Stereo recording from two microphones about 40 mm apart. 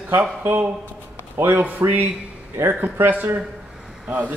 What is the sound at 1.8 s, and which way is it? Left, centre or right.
A man's voice, right.